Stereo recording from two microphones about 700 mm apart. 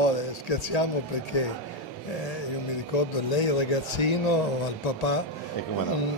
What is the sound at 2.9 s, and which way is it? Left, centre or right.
A man's voice, left.